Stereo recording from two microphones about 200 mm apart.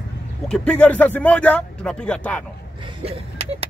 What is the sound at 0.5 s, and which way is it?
Speech, 5° left (ahead or behind).